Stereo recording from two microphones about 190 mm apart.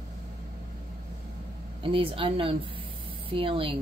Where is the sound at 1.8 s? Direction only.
30° right (ahead or behind).